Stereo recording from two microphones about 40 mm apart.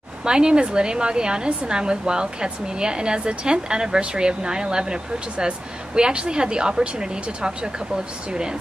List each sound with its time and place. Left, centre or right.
0.2 s a woman's voice: right
5.9 s a woman's voice: right